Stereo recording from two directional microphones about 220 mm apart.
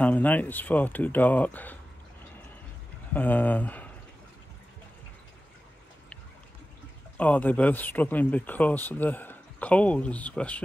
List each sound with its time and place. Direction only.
0.0 s speech: 5° left (ahead or behind)
3.1 s speech: 10° left (ahead or behind)
7.2 s speech: 5° left (ahead or behind)